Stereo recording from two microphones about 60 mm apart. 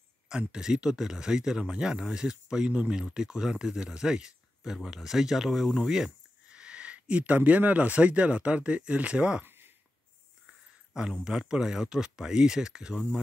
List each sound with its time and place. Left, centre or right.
0.3 s speech: centre
9.4 s a sound: right
11.2 s speech: centre